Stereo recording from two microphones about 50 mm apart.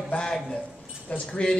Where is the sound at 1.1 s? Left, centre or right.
Left.